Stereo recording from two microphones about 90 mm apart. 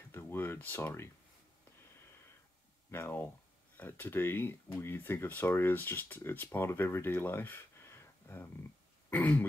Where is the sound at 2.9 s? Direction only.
25° left (ahead or behind).